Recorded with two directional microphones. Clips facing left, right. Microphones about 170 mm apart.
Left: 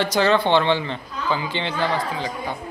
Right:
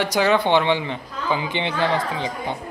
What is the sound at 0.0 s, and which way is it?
A man's voice, 15° right (ahead or behind).